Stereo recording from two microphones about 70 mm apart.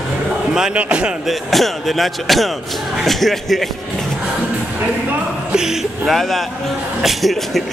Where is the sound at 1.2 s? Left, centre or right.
Centre.